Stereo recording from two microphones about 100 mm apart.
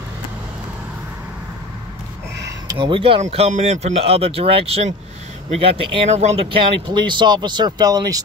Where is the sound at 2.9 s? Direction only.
65° right (ahead or behind).